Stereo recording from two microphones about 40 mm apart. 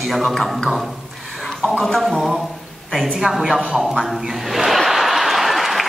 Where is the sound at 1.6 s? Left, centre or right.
Centre.